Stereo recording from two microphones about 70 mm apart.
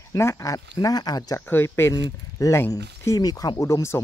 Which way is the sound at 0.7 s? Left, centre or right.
Left.